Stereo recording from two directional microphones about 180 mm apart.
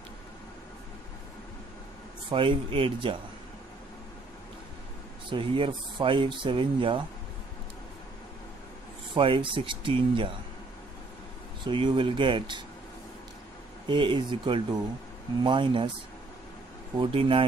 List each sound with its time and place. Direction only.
2.3 s speech: 30° right (ahead or behind)
5.3 s speech: 25° right (ahead or behind)
9.1 s speech: 30° right (ahead or behind)
11.6 s speech: 25° right (ahead or behind)
13.8 s speech: 25° right (ahead or behind)
17.0 s speech: 30° right (ahead or behind)